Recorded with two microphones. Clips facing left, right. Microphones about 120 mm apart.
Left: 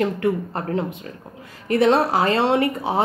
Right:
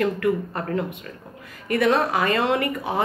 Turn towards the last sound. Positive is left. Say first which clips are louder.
# left 4 dB
turn(degrees=30)  # may be behind; listen again after turning